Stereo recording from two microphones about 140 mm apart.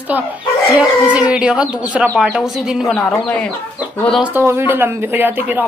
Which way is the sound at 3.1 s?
10° left (ahead or behind).